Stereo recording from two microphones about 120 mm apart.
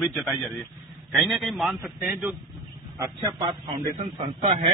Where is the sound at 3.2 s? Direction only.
40° right (ahead or behind).